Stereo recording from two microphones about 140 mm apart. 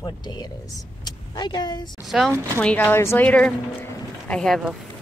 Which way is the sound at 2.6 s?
10° left (ahead or behind).